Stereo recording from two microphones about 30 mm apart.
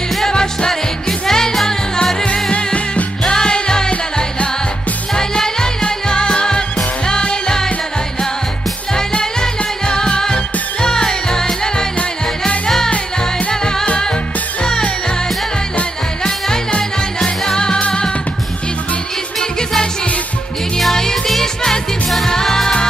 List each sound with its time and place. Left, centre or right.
0.3 s music: left
3.3 s music: left
5.1 s music: left
9.2 s music: left
20.9 s music: centre
22.3 s music: centre